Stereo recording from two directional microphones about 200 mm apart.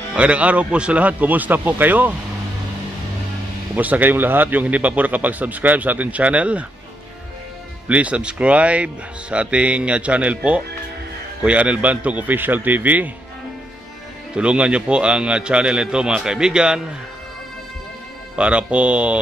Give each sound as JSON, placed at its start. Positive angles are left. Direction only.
{"t": 0.1, "sound": "a man's voice", "side_deg": -5}
{"t": 3.7, "sound": "a man's voice", "side_deg": -10}
{"t": 7.9, "sound": "a man's voice", "side_deg": -5}
{"t": 14.3, "sound": "a man's voice", "side_deg": -5}
{"t": 18.3, "sound": "a man's voice", "side_deg": -5}